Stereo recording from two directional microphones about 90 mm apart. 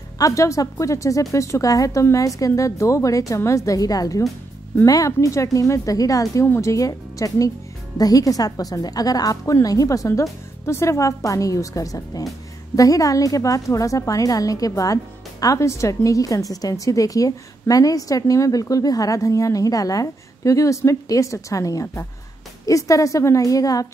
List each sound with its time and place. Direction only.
0.2 s a woman's voice: 35° left (ahead or behind)